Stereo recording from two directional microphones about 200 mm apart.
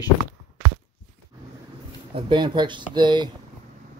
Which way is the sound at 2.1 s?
25° right (ahead or behind).